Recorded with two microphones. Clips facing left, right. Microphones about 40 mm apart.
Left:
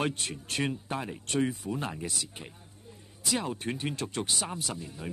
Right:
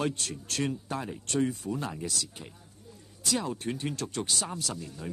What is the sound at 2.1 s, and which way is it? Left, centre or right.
Speech, left.